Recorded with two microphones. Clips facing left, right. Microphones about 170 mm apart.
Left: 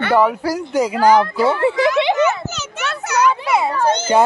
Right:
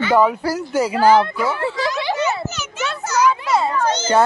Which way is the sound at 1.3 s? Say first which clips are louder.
Left 6 dB; 30° left (ahead or behind).